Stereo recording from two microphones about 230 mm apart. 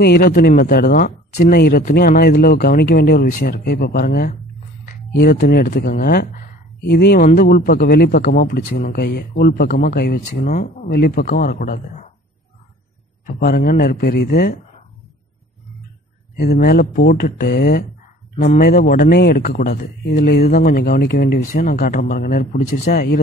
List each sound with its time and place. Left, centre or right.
0.0 s speech: left
13.3 s speech: left
16.3 s speech: left